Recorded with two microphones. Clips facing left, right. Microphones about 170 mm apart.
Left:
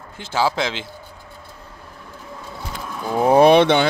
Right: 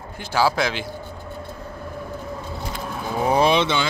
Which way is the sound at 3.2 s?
55° left (ahead or behind).